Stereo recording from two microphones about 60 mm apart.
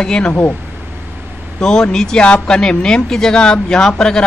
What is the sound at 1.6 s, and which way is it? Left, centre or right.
Speech, centre.